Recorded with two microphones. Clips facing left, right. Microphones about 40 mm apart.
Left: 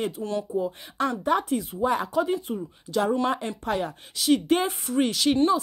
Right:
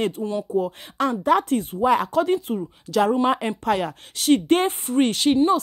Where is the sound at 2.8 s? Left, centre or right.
Right.